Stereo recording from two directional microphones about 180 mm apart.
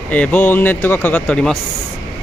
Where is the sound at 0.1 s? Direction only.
10° left (ahead or behind).